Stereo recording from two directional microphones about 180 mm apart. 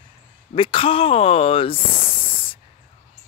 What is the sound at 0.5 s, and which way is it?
Speech, 30° left (ahead or behind).